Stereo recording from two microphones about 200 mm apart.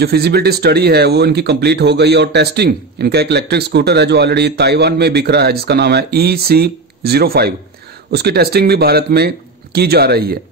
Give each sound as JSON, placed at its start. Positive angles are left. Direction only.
{"t": 0.0, "sound": "speech", "side_deg": -55}